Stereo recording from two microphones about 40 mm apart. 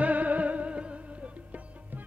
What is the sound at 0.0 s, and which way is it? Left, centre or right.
Music, right.